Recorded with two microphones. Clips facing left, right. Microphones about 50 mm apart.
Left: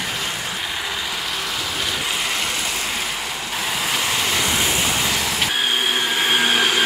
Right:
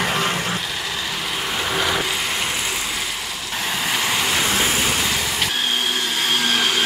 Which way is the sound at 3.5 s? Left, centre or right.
Centre.